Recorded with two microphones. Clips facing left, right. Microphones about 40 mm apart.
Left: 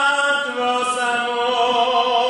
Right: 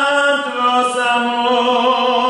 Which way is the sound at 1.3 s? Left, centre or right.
Right.